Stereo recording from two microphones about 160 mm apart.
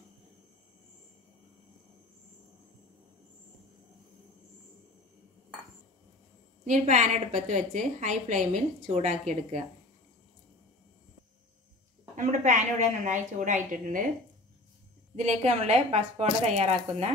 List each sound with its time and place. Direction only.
6.6 s a woman's voice: 50° right (ahead or behind)
12.2 s a woman's voice: 50° right (ahead or behind)
15.1 s a woman's voice: 45° right (ahead or behind)